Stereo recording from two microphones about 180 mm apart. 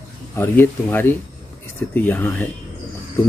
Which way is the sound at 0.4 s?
10° left (ahead or behind).